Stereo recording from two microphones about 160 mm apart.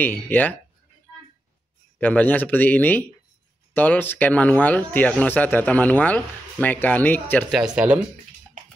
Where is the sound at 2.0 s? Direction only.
10° left (ahead or behind).